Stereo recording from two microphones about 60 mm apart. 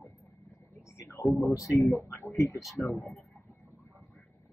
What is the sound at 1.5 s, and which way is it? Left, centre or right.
Speech, left.